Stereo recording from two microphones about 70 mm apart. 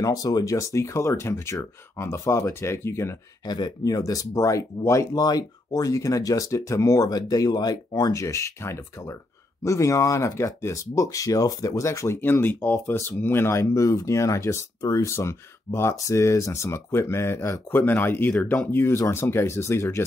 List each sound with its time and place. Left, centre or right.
0.0 s speech: left
3.4 s speech: left
5.1 s speech: left
12.2 s speech: left
15.1 s speech: left